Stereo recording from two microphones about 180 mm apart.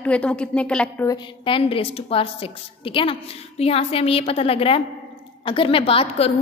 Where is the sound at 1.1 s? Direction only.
30° left (ahead or behind).